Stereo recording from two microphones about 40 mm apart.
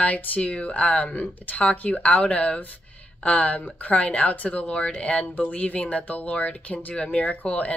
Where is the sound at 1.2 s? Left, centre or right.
Left.